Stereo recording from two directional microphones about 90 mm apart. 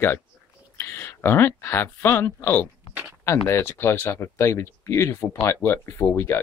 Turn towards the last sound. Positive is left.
turn(degrees=25)  # may be behind; listen again after turning